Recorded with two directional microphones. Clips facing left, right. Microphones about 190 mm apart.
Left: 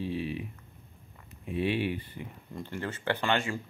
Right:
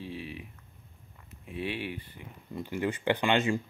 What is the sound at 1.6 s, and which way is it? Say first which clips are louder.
Speech: left 6 dB; 5° right (ahead or behind).